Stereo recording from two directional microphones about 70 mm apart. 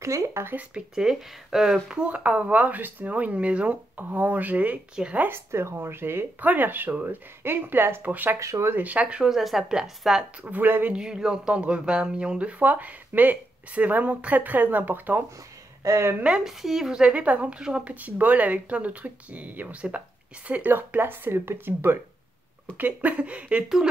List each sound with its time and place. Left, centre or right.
0.0 s speech: right
0.6 s speech: centre
2.0 s speech: centre
5.2 s speech: right
8.4 s speech: right
8.7 s speech: centre
9.3 s speech: centre
10.4 s speech: right
11.0 s speech: centre; by 15.2 s right
15.8 s speech: right
16.2 s speech: centre
16.4 s speech: centre
17.9 s speech: right